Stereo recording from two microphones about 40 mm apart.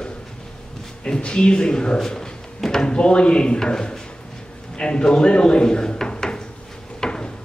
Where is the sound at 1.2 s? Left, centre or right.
Left.